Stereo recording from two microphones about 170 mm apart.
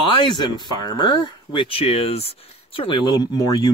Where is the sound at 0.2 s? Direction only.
25° left (ahead or behind).